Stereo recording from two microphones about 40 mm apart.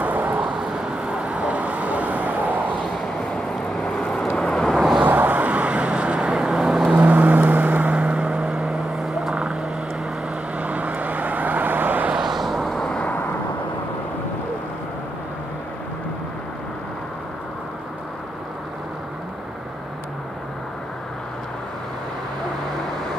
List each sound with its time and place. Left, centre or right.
0.0 s vehicle: right
1.0 s vehicle: right
3.8 s vehicle: left
4.4 s vehicle: centre
4.7 s vehicle: centre
5.0 s vehicle: right; by 6.9 s centre
6.9 s vehicle: right
9.3 s frog: right
10.6 s vehicle: right
12.2 s vehicle: centre
12.7 s vehicle: centre